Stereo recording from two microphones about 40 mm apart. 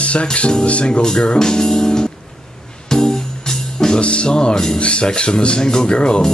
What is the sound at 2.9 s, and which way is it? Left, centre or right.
Music, centre.